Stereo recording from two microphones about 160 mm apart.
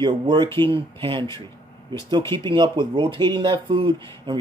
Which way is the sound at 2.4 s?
30° right (ahead or behind).